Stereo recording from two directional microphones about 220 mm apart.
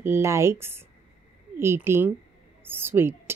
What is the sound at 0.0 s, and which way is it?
Speech, 10° right (ahead or behind).